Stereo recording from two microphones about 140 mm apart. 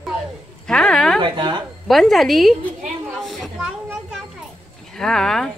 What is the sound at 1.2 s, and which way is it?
Speech, 35° right (ahead or behind).